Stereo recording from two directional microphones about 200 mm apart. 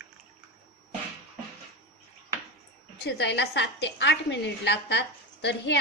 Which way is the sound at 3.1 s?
60° left (ahead or behind).